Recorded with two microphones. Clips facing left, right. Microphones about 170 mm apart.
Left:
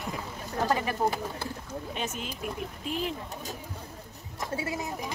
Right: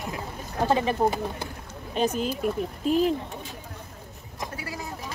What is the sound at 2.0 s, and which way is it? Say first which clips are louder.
Speech: right 13 dB; 35° right (ahead or behind).